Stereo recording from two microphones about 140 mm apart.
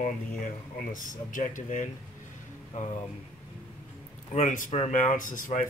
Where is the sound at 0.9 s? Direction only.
70° left (ahead or behind).